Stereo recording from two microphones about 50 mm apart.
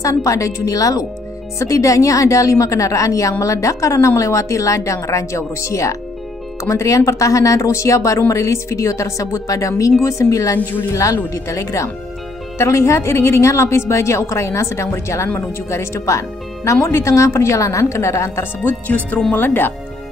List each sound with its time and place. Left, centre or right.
0.0 s a woman's voice: left
1.6 s a woman's voice: left
12.5 s a woman's voice: left
18.6 s speech: left
19.3 s speech: left